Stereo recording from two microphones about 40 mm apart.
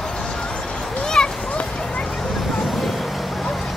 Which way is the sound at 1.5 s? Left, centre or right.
Left.